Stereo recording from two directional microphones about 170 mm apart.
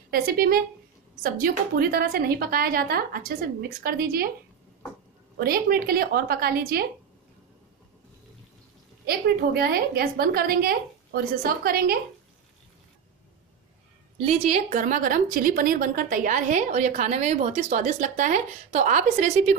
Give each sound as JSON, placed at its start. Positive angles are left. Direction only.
{"t": 0.1, "sound": "a woman's voice", "side_deg": -60}
{"t": 5.4, "sound": "a woman's voice", "side_deg": -60}
{"t": 9.0, "sound": "a woman's voice", "side_deg": -65}
{"t": 14.2, "sound": "a woman's voice", "side_deg": -40}